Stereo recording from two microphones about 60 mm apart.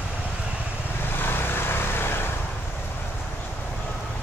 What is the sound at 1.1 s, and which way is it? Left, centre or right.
Vehicle, left.